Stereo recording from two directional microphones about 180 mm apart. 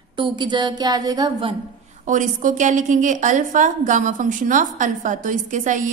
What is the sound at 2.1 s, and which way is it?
A woman's voice, 45° right (ahead or behind).